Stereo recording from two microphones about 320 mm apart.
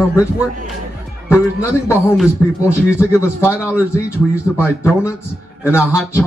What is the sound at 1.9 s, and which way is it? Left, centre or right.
A man's voice, centre.